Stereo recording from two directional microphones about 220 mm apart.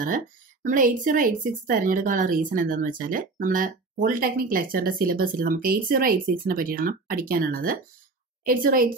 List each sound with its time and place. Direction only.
0.7 s speech: 35° right (ahead or behind)